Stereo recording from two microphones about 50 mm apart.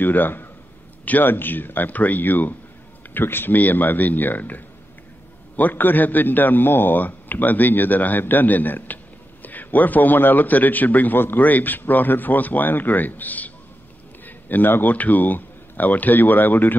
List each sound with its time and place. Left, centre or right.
0.0 s a man's voice: left